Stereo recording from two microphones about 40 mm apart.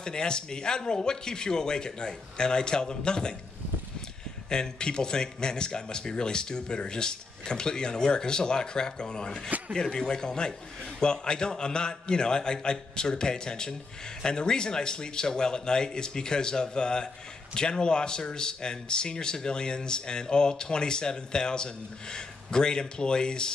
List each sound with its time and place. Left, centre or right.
0.0 s speech: left
4.5 s speech: centre